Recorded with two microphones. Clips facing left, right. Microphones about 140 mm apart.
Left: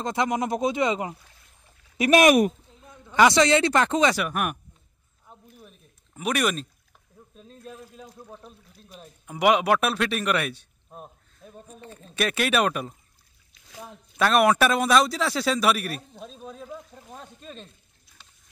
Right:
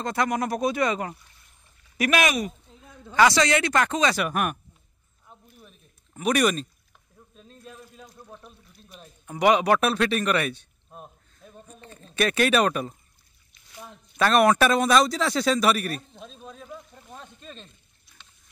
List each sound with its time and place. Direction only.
0.0 s speech: 20° left (ahead or behind)
2.0 s speech: 35° left (ahead or behind)
2.2 s speech: 55° left (ahead or behind)
3.2 s speech: 25° left (ahead or behind)
4.2 s speech: 5° left (ahead or behind)
5.3 s a sound: 5° left (ahead or behind)
7.3 s speech: 5° left (ahead or behind)
16.7 s a sound: 5° left (ahead or behind)